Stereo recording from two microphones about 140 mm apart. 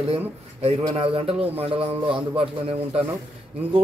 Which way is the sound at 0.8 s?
40° right (ahead or behind).